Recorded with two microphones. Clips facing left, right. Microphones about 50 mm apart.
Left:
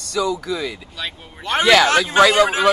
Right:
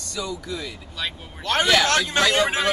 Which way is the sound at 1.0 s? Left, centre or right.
Centre.